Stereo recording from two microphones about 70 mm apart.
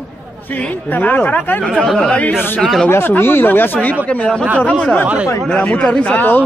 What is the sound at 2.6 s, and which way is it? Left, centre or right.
Speech, centre.